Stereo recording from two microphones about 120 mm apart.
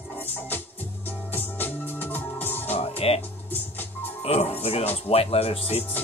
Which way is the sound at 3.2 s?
15° left (ahead or behind).